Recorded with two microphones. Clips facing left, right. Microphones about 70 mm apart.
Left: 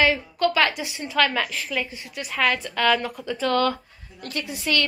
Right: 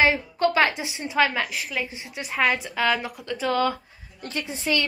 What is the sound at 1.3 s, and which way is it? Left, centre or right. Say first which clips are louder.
Speech: left 2 dB; centre.